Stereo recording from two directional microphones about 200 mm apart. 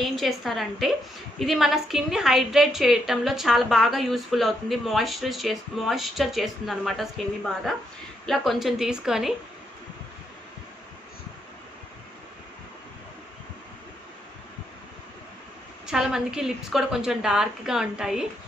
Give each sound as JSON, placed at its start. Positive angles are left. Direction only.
{"t": 0.0, "sound": "a woman's voice", "side_deg": 0}
{"t": 15.9, "sound": "a woman's voice", "side_deg": -5}